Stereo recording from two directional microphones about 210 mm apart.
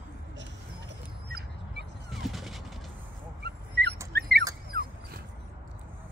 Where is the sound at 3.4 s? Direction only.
50° right (ahead or behind).